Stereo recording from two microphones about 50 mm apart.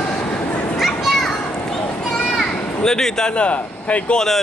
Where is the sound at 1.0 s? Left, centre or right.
Centre.